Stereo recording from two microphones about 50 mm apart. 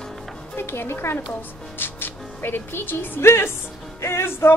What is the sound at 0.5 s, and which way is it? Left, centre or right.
A woman's voice, left.